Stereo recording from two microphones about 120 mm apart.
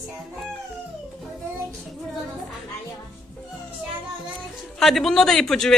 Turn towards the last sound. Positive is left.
turn(degrees=5)  # may be behind; listen again after turning